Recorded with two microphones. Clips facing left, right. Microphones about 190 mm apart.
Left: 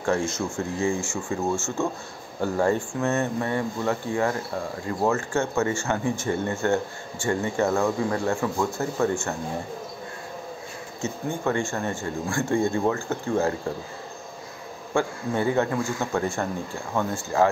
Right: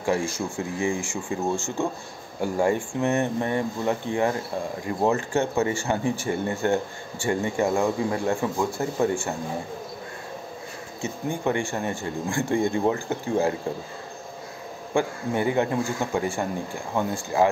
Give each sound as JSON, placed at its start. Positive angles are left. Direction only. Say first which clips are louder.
{"t": 0.0, "sound": "speech", "louder": "even", "side_deg": -10}
{"t": 11.0, "sound": "speech", "louder": "even", "side_deg": -15}
{"t": 15.0, "sound": "speech", "louder": "even", "side_deg": -15}